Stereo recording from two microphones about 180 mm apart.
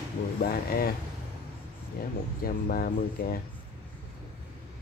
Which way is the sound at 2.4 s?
55° left (ahead or behind).